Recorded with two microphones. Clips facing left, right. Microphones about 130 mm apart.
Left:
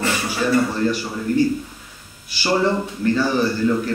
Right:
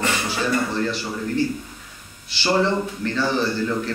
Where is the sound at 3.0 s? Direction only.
30° left (ahead or behind).